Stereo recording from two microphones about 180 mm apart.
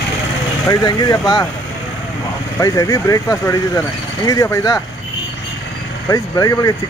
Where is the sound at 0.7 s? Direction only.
20° left (ahead or behind).